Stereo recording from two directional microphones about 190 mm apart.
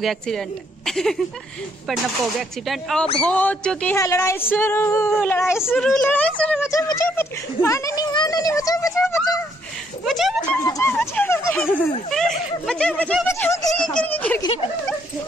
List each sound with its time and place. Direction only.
0.0 s speech: centre (ahead or behind)
2.6 s a woman's voice: centre (ahead or behind); by 9.0 s 20° left (ahead or behind)
10.0 s a sound: centre (ahead or behind)
10.6 s a woman's voice: 15° left (ahead or behind)
14.4 s speech: 30° left (ahead or behind)